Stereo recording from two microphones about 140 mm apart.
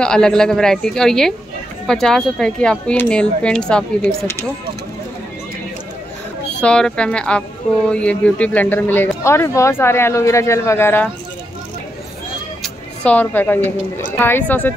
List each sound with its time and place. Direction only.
0.0 s speech: 5° left (ahead or behind)
6.6 s speech: 5° left (ahead or behind)
12.6 s a woman's voice: 10° left (ahead or behind)